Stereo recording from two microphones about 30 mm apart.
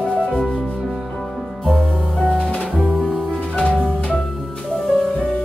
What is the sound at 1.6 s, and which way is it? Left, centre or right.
Music, centre.